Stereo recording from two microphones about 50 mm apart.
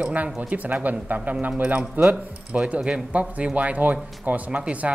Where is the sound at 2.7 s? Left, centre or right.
Right.